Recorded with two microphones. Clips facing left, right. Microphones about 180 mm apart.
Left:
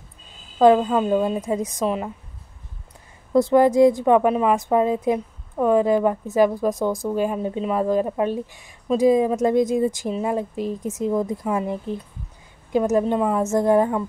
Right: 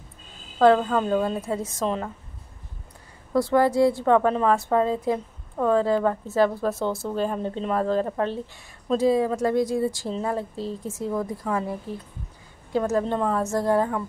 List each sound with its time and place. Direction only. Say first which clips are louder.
0.6 s a woman's voice: left 3 dB; 15° left (ahead or behind)
3.3 s a woman's voice: left 5 dB; 20° left (ahead or behind)